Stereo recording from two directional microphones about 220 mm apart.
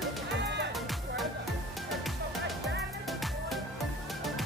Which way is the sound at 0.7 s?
Centre (ahead or behind).